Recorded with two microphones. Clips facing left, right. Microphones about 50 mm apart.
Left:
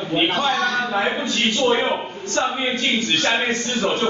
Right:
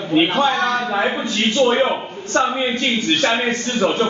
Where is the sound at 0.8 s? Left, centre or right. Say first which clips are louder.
Right 1 dB; centre.